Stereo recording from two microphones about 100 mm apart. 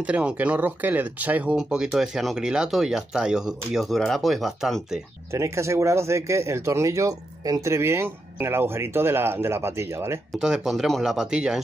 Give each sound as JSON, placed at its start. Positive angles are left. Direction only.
{"t": 0.0, "sound": "speech", "side_deg": -10}
{"t": 5.3, "sound": "speech", "side_deg": -30}
{"t": 10.4, "sound": "speech", "side_deg": -5}